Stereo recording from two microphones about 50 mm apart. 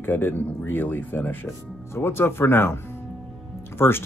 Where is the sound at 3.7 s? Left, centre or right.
Left.